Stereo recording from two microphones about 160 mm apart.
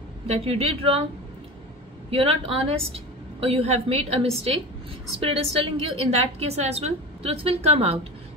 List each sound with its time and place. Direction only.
0.3 s a woman's voice: 40° right (ahead or behind)
2.0 s a woman's voice: 35° right (ahead or behind)